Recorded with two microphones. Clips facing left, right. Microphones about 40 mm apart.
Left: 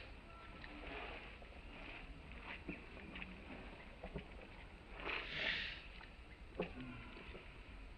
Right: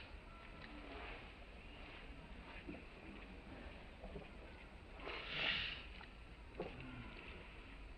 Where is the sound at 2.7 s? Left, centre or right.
Left.